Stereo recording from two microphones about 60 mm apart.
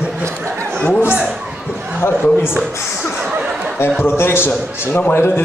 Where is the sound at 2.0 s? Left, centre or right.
Left.